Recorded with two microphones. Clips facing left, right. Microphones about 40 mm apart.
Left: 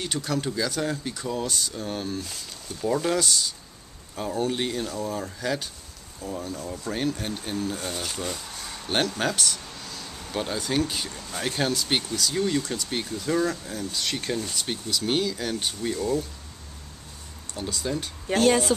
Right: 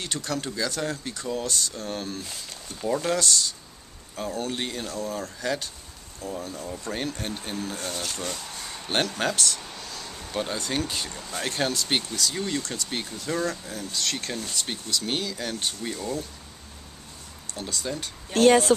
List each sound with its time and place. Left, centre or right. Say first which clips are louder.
0.0 s speech: left 2 dB; centre
17.6 s speech: left 2 dB; centre
18.7 s speech: right 4 dB; right